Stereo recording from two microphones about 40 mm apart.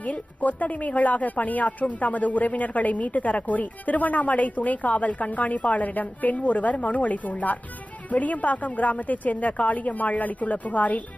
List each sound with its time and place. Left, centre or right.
0.0 s speech: left